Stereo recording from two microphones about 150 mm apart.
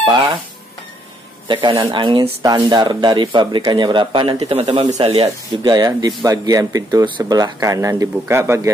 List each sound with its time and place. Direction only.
0.0 s speech: 30° right (ahead or behind)
1.5 s speech: 30° right (ahead or behind)
4.8 s speech: 25° right (ahead or behind)